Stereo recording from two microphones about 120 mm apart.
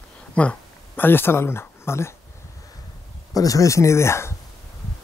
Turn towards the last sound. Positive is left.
turn(degrees=20)  # may be behind; listen again after turning